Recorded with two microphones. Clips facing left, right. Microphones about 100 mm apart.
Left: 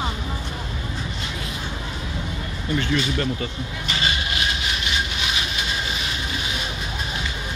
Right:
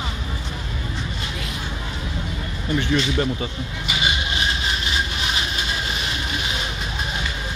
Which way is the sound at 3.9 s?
15° right (ahead or behind).